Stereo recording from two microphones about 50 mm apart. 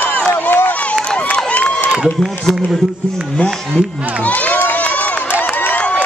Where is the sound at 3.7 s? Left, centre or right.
Left.